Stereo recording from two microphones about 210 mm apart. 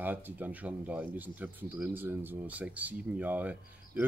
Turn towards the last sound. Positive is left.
turn(degrees=-10)  # may be behind; listen again after turning